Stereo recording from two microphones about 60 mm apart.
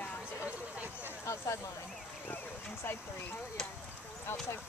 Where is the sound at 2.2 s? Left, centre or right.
Left.